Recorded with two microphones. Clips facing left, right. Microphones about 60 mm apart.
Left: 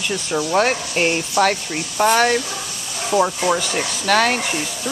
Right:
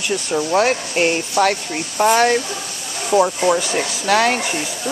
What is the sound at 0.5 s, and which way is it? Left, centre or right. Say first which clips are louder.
Speech: right 1 dB; centre.